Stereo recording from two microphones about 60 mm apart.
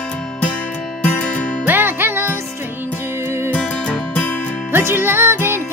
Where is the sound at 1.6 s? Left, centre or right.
Right.